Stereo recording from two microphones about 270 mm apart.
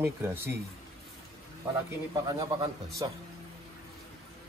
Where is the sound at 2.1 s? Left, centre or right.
Centre.